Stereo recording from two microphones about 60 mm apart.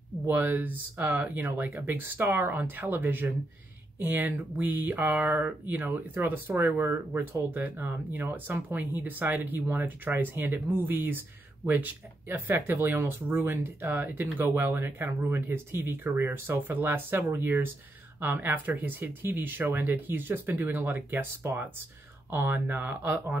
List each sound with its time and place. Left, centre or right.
0.3 s speech: right
22.3 s speech: right